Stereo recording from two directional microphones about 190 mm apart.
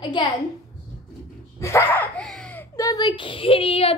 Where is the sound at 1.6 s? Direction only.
10° left (ahead or behind).